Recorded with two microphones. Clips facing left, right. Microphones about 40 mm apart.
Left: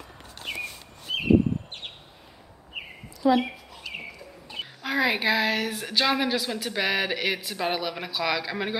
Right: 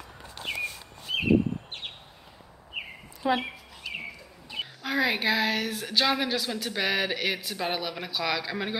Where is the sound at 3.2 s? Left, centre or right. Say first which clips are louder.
Left 5 dB; right.